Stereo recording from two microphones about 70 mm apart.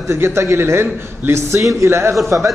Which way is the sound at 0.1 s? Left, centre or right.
Right.